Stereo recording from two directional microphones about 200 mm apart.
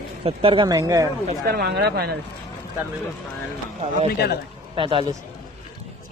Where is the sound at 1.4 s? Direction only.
55° right (ahead or behind).